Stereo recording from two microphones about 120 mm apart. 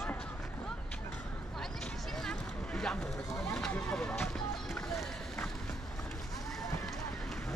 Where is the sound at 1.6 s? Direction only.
5° left (ahead or behind).